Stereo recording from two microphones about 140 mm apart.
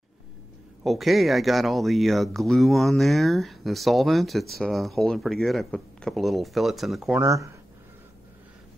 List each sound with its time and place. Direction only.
0.8 s speech: centre (ahead or behind)
7.2 s speech: 20° right (ahead or behind)